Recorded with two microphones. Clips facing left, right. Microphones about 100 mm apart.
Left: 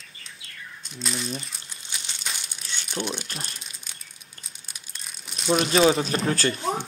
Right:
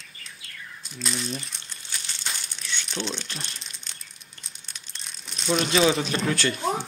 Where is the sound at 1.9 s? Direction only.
20° left (ahead or behind).